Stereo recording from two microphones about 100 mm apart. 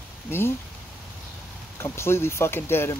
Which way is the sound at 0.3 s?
25° left (ahead or behind).